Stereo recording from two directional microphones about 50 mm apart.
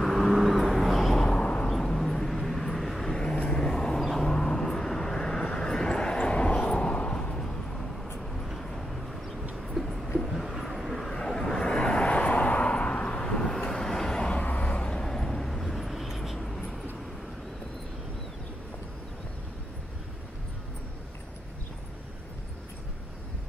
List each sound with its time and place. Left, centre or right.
0.0 s vehicle: centre
1.7 s vehicle: centre
8.3 s vehicle: centre
14.3 s vehicle: left; by 16.8 s centre